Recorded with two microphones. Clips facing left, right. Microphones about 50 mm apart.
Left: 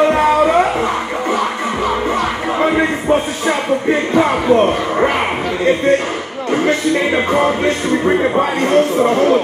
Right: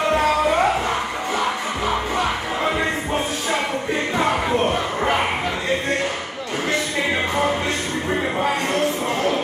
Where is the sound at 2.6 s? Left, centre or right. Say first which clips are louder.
Left 8 dB; left.